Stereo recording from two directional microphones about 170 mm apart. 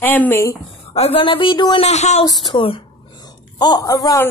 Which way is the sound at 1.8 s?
40° left (ahead or behind).